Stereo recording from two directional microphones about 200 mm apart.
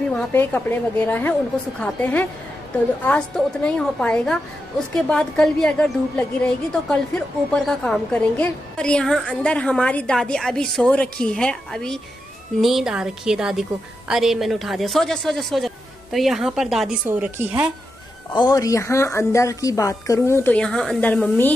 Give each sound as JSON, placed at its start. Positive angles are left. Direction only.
{"t": 0.1, "sound": "a woman's voice", "side_deg": 10}
{"t": 18.3, "sound": "a woman's voice", "side_deg": 20}